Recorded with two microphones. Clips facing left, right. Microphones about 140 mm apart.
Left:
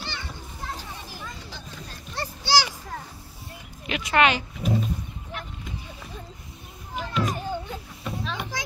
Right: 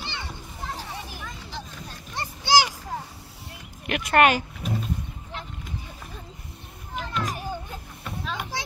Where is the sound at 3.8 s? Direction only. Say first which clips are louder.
Right 2 dB; 55° right (ahead or behind).